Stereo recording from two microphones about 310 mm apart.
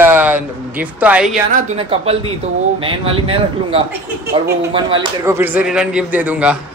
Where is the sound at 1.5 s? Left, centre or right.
Centre.